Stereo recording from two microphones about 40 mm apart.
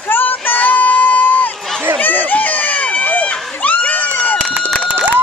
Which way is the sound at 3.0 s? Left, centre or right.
Left.